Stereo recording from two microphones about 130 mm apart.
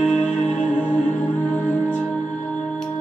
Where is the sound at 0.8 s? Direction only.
65° left (ahead or behind).